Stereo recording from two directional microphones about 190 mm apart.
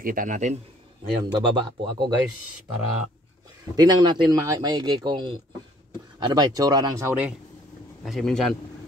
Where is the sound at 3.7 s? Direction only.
20° right (ahead or behind).